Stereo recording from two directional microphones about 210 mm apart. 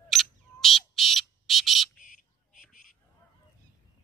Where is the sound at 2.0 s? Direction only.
40° left (ahead or behind).